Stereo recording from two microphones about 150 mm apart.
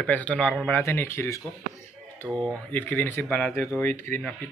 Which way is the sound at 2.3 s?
5° left (ahead or behind).